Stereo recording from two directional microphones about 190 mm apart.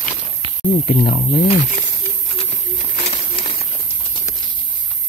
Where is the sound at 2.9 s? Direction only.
40° left (ahead or behind).